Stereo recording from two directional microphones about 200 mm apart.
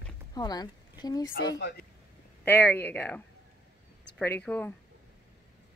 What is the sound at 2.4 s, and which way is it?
Speech, 10° left (ahead or behind).